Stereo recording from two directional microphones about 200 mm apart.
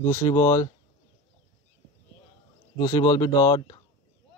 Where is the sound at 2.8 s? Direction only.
20° left (ahead or behind).